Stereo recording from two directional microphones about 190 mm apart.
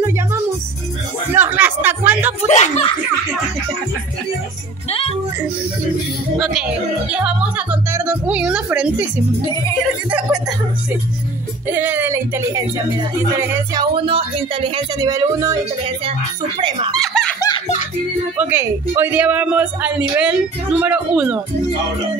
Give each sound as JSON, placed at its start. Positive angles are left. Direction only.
{"t": 1.3, "sound": "speech", "side_deg": -10}
{"t": 2.4, "sound": "speech", "side_deg": 35}
{"t": 4.8, "sound": "speech", "side_deg": 30}
{"t": 6.3, "sound": "speech", "side_deg": 0}
{"t": 9.5, "sound": "music", "side_deg": 20}
{"t": 11.7, "sound": "speech", "side_deg": -10}
{"t": 13.9, "sound": "speech", "side_deg": -30}
{"t": 16.5, "sound": "speech", "side_deg": -25}
{"t": 17.0, "sound": "laughter", "side_deg": 5}
{"t": 18.4, "sound": "speech", "side_deg": -10}